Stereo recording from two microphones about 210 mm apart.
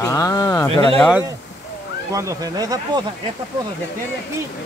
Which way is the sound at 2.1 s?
15° right (ahead or behind).